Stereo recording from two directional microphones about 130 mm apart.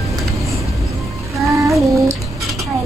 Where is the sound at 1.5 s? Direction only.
25° right (ahead or behind).